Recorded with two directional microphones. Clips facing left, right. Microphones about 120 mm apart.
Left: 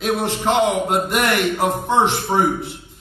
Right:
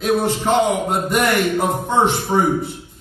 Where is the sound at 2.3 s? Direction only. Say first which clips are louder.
Even; 20° left (ahead or behind).